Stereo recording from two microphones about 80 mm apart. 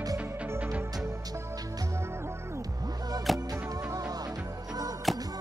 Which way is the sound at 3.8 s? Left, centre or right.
Right.